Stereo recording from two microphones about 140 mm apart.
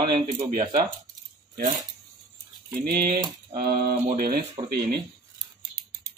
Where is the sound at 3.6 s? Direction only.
90° right.